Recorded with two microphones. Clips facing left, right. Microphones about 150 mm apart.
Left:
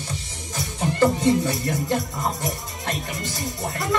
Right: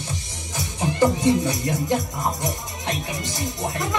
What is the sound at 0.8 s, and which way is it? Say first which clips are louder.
Music: even; 15° right (ahead or behind).